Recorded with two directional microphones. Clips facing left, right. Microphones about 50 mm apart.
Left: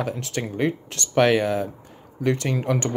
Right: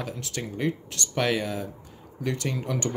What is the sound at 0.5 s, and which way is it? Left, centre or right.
Speech, left.